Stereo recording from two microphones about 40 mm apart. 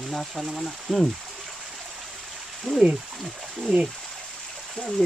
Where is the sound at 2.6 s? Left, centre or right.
Centre.